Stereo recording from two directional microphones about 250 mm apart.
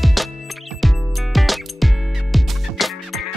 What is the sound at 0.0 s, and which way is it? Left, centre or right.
Music, centre.